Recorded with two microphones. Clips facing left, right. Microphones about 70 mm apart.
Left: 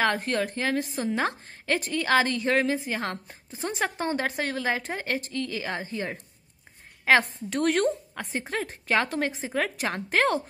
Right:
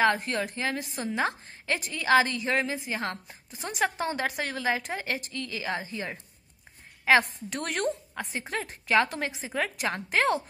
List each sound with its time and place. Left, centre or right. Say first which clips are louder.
0.0 s a woman's voice: even; left
3.5 s a woman's voice: even; left
7.4 s a woman's voice: left 6 dB; left
8.2 s a woman's voice: left 2 dB; left
8.6 s a woman's voice: right 3 dB; left